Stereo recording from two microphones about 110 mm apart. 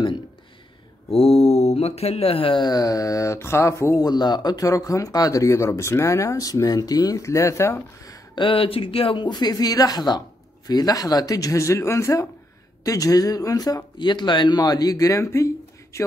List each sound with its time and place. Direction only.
1.1 s speech: 60° left (ahead or behind)
2.6 s speech: 35° left (ahead or behind)
8.4 s speech: 55° left (ahead or behind); by 16.0 s 30° left (ahead or behind)